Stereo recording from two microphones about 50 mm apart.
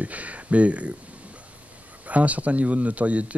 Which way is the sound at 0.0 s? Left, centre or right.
Right.